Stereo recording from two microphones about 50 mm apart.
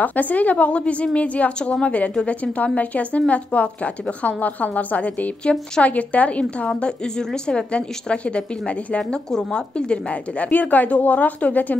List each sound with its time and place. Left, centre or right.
0.0 s speech: left
6.7 s speech: centre
10.4 s speech: left